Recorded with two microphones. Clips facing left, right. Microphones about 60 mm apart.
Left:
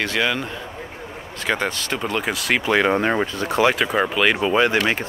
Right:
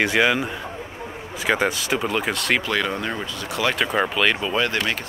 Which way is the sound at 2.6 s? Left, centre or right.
Left.